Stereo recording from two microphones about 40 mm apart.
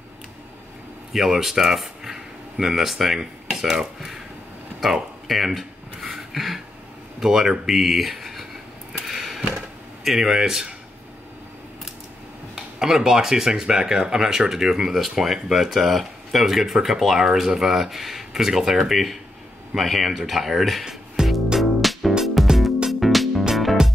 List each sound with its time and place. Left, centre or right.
1.1 s speech: centre
4.8 s speech: centre
5.3 s a sound: centre
7.2 s speech: centre
9.0 s a sound: centre
10.0 s speech: centre
12.7 s speech: centre
21.2 s music: centre
21.5 s music: centre